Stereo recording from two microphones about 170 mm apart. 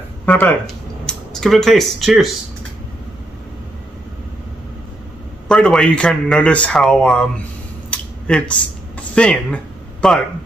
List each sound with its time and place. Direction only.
0.2 s speech: 10° left (ahead or behind)
5.5 s speech: centre (ahead or behind)
7.9 s a sound: 5° left (ahead or behind)
9.1 s speech: 5° left (ahead or behind)